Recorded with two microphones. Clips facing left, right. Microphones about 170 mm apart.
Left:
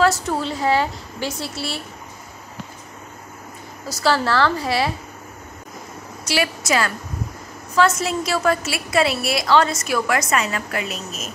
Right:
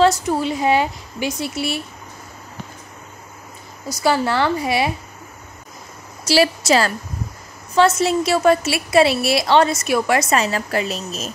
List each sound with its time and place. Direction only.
0.0 s a woman's voice: 15° right (ahead or behind)
3.9 s a woman's voice: 15° right (ahead or behind)
6.2 s a woman's voice: 35° right (ahead or behind)